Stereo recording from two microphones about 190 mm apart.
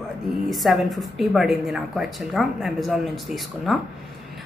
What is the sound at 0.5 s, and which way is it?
Speech, centre (ahead or behind).